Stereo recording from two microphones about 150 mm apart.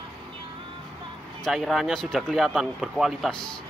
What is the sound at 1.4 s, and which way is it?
Speech, centre (ahead or behind).